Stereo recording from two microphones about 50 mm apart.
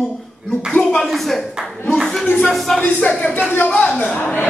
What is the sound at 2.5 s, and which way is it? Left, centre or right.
Speech, centre.